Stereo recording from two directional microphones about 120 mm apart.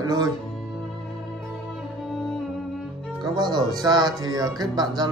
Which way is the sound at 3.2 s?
35° right (ahead or behind).